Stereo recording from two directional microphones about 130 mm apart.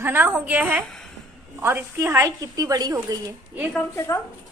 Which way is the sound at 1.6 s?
20° right (ahead or behind).